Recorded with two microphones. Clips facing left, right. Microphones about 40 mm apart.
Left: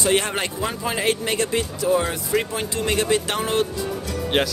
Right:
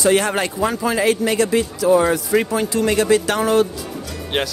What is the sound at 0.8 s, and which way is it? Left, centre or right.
Speech, centre.